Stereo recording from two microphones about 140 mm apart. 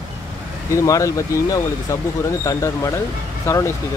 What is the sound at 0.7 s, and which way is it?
Speech, 25° left (ahead or behind).